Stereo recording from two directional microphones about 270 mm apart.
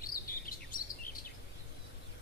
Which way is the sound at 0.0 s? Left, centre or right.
Left.